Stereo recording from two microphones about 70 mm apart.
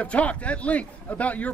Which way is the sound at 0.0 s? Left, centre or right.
Centre.